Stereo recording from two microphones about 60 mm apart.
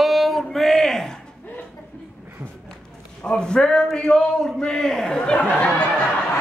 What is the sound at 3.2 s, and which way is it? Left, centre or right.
A man's voice, centre.